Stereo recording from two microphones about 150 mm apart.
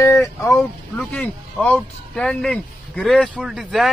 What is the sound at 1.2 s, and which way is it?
Speech, 10° left (ahead or behind).